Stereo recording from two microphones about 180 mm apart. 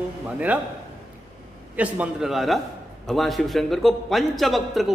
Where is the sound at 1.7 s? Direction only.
5° right (ahead or behind).